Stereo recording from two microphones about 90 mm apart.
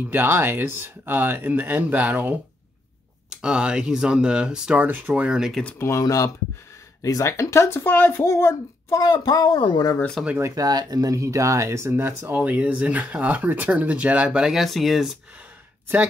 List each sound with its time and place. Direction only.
0.1 s speech: 25° right (ahead or behind); by 5.6 s 10° right (ahead or behind)
5.8 s speech: 35° left (ahead or behind)
9.0 s speech: 45° left (ahead or behind)
10.4 s speech: 40° right (ahead or behind); by 15.1 s centre (ahead or behind)